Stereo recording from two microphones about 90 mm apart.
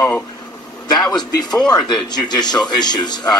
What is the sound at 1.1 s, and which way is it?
Speech, 50° left (ahead or behind).